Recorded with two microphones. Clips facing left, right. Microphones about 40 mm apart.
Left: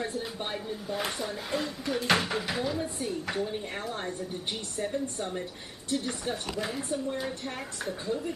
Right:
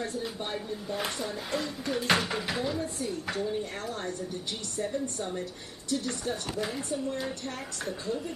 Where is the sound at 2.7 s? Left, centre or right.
Left.